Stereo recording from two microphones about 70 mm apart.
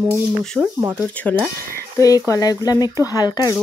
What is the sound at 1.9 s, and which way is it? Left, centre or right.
Speech, left.